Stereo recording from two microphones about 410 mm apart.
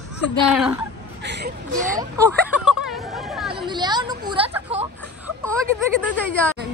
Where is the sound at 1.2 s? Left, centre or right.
Right.